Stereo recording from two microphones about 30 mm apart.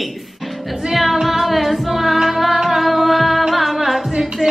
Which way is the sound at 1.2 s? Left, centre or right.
Centre.